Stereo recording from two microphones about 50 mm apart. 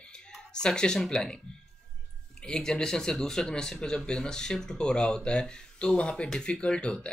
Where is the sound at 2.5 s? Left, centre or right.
Centre.